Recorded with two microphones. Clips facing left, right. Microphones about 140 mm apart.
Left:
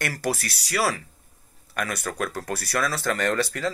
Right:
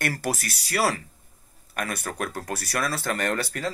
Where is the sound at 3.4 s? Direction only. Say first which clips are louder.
Left 4 dB; 50° right (ahead or behind).